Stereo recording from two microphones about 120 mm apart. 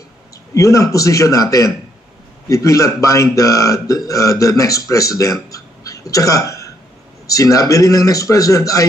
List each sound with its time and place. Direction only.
0.6 s a man's voice: 25° left (ahead or behind)